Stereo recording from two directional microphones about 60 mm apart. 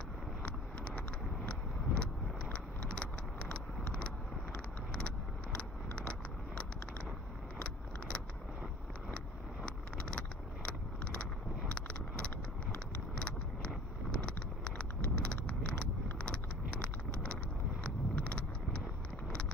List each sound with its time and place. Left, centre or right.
0.4 s vehicle: centre
9.1 s vehicle: centre